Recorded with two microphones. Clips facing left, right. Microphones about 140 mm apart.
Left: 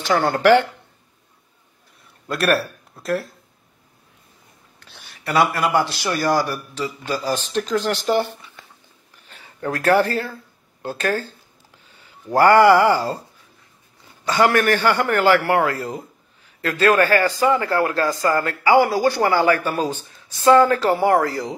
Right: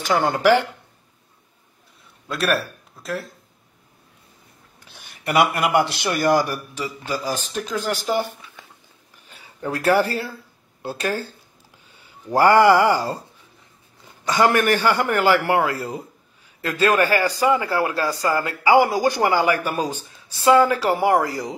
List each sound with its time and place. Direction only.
0.0 s speech: 15° right (ahead or behind)
2.2 s speech: centre (ahead or behind)
5.2 s speech: 15° right (ahead or behind)
9.3 s speech: 15° right (ahead or behind)
14.2 s speech: 15° right (ahead or behind)